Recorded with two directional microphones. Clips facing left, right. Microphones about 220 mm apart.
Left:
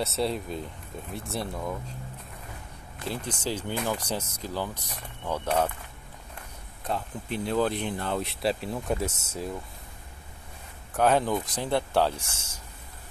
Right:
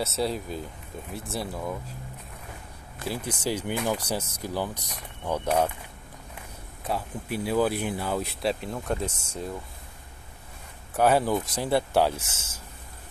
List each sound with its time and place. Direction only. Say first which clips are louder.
0.0 s speech: even; centre (ahead or behind)
3.1 s speech: right 2 dB; 5° right (ahead or behind)
6.8 s speech: right 1 dB; 5° right (ahead or behind)
11.0 s speech: right 1 dB; 10° right (ahead or behind)